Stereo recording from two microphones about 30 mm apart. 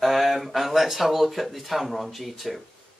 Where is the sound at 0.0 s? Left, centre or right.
Centre.